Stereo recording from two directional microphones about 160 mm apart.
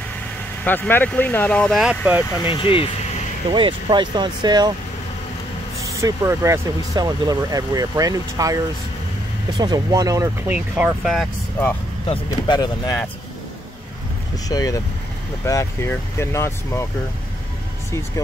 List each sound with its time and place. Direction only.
0.7 s speech: 10° left (ahead or behind)
1.8 s speech: 5° right (ahead or behind)
2.4 s speech: 30° left (ahead or behind)
3.5 s speech: 30° right (ahead or behind)
5.9 s speech: 20° right (ahead or behind)
10.5 s speech: 5° right (ahead or behind)
12.1 s speech: 25° left (ahead or behind)
14.5 s speech: 25° left (ahead or behind)